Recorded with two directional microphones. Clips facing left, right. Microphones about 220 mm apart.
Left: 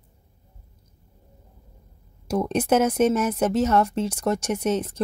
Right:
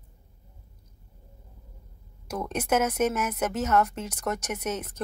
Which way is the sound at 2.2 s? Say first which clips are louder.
Left 8 dB; 30° left (ahead or behind).